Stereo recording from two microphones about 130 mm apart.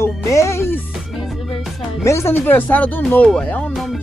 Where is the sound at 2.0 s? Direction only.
20° left (ahead or behind); by 4.0 s centre (ahead or behind).